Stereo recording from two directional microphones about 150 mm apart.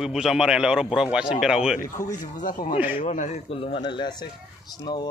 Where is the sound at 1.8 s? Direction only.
60° left (ahead or behind).